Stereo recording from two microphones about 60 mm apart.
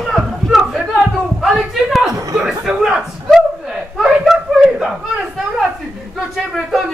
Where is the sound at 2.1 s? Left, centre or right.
Right.